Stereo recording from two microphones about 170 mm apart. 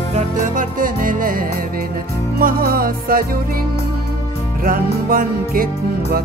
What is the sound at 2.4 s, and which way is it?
Music, 60° right (ahead or behind).